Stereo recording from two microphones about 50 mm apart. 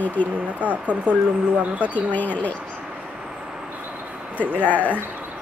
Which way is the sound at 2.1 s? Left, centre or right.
Left.